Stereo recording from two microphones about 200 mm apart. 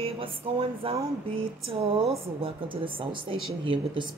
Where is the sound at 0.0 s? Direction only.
30° right (ahead or behind).